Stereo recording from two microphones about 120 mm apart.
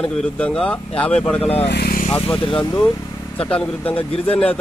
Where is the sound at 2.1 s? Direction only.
45° left (ahead or behind).